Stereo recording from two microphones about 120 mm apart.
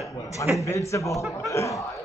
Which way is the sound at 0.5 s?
25° left (ahead or behind).